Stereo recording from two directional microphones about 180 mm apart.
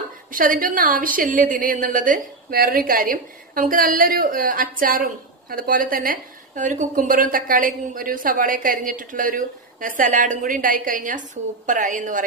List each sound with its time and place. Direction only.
0.3 s a woman's voice: 50° right (ahead or behind)